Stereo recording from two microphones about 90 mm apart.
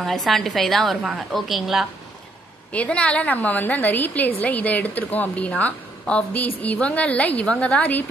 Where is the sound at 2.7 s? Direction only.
15° left (ahead or behind).